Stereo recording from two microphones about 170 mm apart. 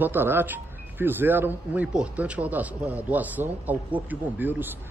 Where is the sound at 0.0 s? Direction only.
10° right (ahead or behind).